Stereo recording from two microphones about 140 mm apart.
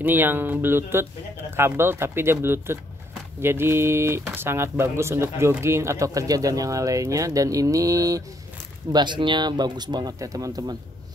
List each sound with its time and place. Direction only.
0.0 s speech: 15° right (ahead or behind)